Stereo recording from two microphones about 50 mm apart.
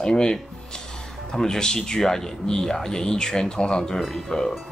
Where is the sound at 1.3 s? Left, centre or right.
Centre.